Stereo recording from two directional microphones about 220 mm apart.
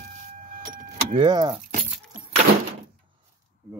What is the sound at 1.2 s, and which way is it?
Speech, 20° right (ahead or behind).